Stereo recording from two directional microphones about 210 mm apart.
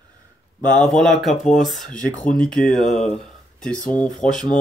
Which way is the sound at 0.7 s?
5° left (ahead or behind).